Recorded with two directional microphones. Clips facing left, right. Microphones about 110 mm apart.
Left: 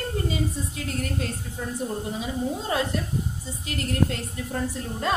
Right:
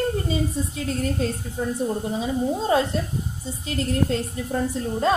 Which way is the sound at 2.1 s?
30° right (ahead or behind).